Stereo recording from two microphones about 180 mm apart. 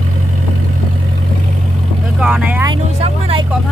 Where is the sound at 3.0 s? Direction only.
35° right (ahead or behind).